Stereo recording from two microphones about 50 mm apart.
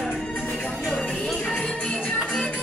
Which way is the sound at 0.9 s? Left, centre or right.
Centre.